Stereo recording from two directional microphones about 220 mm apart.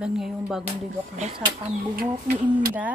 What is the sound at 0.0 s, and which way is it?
Speech, centre (ahead or behind).